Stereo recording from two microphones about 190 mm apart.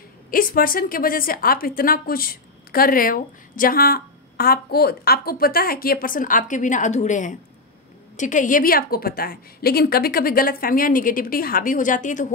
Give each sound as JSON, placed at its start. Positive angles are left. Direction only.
{"t": 0.3, "sound": "a woman's voice", "side_deg": 50}